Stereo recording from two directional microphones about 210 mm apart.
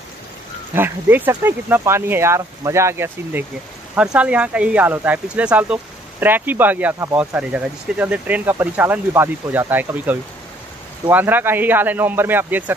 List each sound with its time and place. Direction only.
0.7 s speech: 10° right (ahead or behind)